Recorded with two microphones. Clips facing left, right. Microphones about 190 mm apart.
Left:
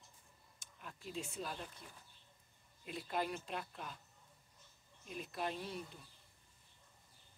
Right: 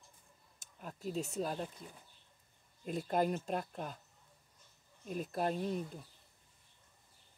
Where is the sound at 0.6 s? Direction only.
40° right (ahead or behind).